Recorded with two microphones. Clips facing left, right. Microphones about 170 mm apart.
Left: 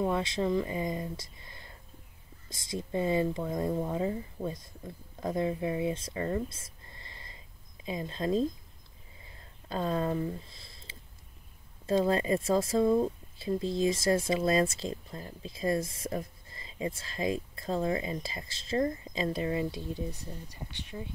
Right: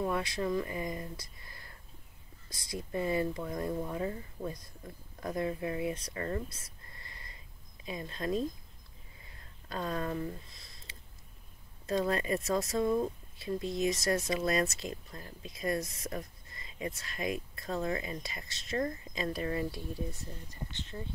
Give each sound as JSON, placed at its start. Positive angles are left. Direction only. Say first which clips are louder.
{"t": 0.0, "sound": "speech", "louder": "left 3 dB", "side_deg": 25}
{"t": 9.2, "sound": "a sound", "louder": "left 4 dB", "side_deg": 25}
{"t": 11.8, "sound": "speech", "louder": "left 4 dB", "side_deg": 30}